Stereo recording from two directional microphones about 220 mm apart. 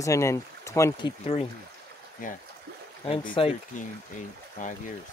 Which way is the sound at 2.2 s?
35° left (ahead or behind).